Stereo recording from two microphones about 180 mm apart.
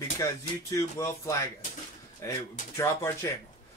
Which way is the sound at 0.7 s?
15° left (ahead or behind).